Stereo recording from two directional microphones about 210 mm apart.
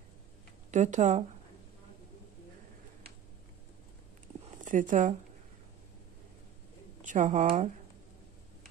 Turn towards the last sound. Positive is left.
turn(degrees=-35)  # may be behind; listen again after turning